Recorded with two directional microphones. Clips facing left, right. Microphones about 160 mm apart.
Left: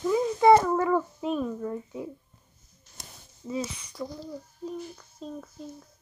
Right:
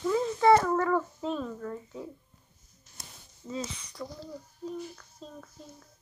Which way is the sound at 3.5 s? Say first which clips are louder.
Left 4 dB; 10° left (ahead or behind).